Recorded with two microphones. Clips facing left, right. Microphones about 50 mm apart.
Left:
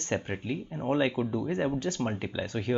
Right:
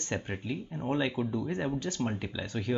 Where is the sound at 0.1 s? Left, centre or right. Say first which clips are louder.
Left 3 dB; centre.